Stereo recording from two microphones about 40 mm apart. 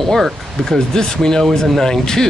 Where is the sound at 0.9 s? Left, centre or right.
Centre.